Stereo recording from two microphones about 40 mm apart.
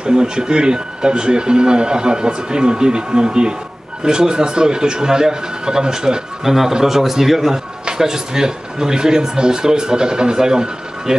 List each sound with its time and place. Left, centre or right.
0.0 s speech: centre